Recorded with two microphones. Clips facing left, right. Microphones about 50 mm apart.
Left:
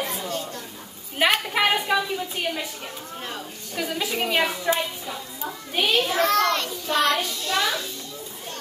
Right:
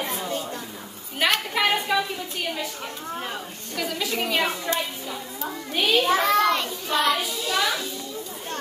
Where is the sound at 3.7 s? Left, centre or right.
Centre.